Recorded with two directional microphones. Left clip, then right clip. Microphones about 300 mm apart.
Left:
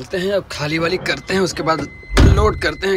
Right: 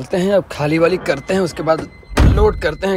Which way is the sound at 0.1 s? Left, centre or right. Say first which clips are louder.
Right 4 dB; centre.